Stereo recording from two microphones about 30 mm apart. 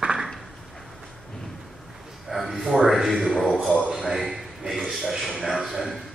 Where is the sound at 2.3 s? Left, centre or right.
Centre.